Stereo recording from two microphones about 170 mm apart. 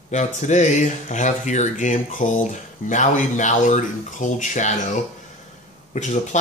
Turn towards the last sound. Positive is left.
turn(degrees=45)  # may be behind; listen again after turning